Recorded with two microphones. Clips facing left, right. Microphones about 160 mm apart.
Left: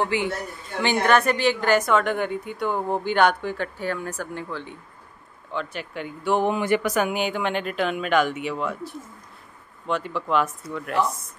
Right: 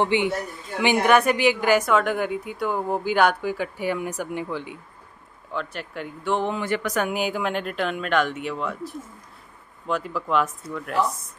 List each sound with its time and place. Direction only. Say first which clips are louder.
0.0 s a man's voice: right 3 dB; 20° right (ahead or behind)
5.5 s speech: left 1 dB; centre (ahead or behind)